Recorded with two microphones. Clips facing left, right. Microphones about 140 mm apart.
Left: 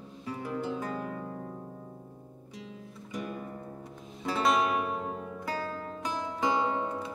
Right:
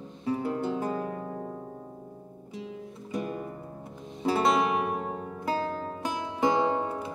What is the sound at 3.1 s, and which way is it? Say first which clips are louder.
Music: right 4 dB; 25° right (ahead or behind).